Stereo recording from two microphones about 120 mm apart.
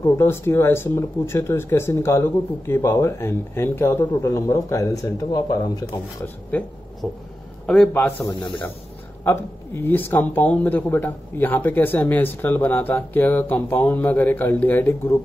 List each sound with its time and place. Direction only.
0.0 s speech: 20° left (ahead or behind)
6.5 s speech: 15° left (ahead or behind)
7.0 s a sound: 5° left (ahead or behind)
7.6 s a man's voice: 5° left (ahead or behind)
7.9 s speech: 20° left (ahead or behind)